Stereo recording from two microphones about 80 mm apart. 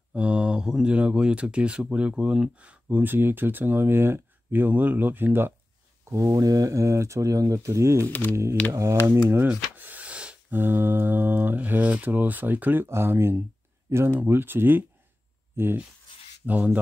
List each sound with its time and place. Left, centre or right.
0.1 s speech: centre
6.0 s speech: right
8.1 s speech: left
9.5 s a sound: right
10.5 s speech: right